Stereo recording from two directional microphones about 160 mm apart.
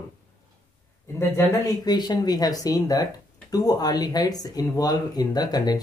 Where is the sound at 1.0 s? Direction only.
20° left (ahead or behind).